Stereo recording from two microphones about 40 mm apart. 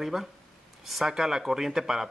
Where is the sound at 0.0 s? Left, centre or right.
Centre.